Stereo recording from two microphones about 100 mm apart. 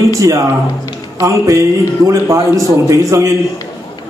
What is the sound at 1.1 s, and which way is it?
A man's voice, 35° right (ahead or behind).